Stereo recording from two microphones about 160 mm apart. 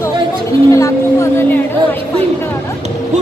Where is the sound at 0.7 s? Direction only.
20° left (ahead or behind).